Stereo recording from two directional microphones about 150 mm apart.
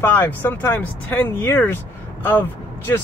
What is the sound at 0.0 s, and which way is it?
Speech, 10° left (ahead or behind).